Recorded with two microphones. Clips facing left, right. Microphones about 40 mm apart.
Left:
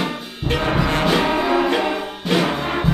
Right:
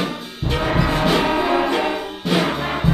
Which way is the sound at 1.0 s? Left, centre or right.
Centre.